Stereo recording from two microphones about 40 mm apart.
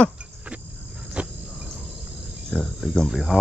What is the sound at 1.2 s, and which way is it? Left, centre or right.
Cricket, right.